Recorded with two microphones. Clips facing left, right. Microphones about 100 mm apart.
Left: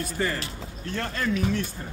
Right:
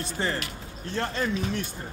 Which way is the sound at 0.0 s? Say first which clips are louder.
Left 1 dB; 25° right (ahead or behind).